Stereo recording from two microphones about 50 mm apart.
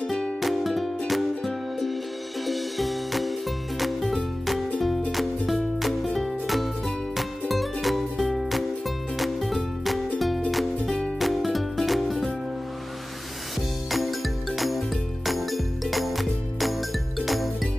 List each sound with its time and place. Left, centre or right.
0.4 s music: centre
13.8 s music: centre